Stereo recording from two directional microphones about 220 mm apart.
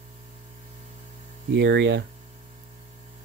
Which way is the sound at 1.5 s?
50° right (ahead or behind).